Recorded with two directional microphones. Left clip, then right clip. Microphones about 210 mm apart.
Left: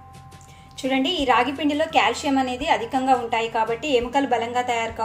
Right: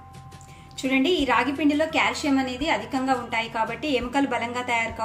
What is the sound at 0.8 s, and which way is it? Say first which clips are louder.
A woman's voice: left 1 dB; 5° left (ahead or behind).